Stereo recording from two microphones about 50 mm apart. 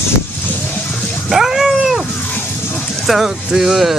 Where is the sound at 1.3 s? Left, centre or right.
Centre.